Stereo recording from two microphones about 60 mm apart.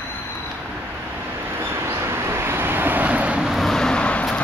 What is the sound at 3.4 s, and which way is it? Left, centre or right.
Vehicle, centre.